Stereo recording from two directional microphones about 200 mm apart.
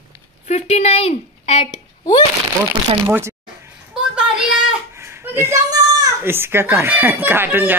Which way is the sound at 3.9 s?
5° right (ahead or behind).